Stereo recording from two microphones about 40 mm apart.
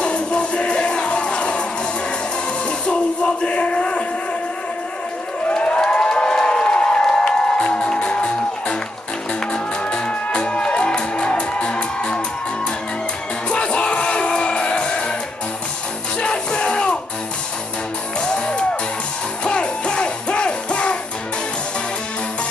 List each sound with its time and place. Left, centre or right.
0.0 s music: left
3.4 s a sound: left
5.5 s civil defense siren: left
5.9 s a sound: centre
7.2 s music: left
13.5 s music: left
16.2 s music: left
18.2 s music: left